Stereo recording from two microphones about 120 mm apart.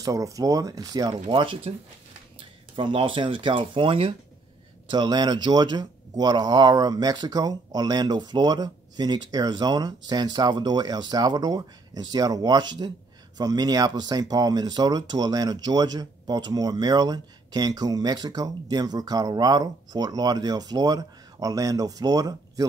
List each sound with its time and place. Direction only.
0.0 s speech: 30° right (ahead or behind)
1.1 s speech: 45° right (ahead or behind)
4.8 s speech: 35° right (ahead or behind)